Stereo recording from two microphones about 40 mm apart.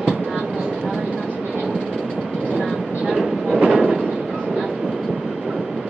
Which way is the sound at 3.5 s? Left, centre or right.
Centre.